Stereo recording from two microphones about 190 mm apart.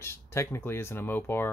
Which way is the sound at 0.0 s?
15° left (ahead or behind).